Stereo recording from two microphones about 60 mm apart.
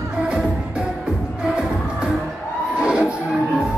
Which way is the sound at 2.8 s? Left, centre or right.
Centre.